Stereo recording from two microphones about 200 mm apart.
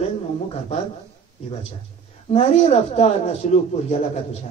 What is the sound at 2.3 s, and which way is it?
A man's voice, 35° left (ahead or behind).